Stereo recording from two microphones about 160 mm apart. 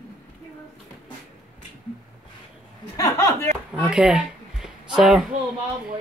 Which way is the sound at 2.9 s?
20° left (ahead or behind).